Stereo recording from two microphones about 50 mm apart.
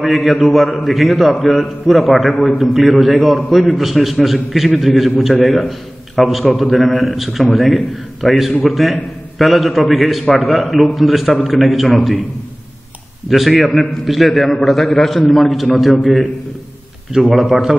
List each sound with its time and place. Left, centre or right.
0.0 s a man's voice: centre
13.3 s a man's voice: centre
17.1 s a man's voice: centre